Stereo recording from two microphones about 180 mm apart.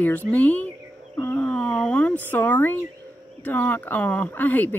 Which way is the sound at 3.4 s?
10° left (ahead or behind).